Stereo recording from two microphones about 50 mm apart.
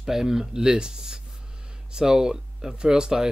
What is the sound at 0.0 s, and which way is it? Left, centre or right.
Speech, centre.